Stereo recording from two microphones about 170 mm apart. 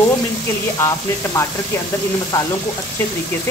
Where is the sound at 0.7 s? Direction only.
15° left (ahead or behind).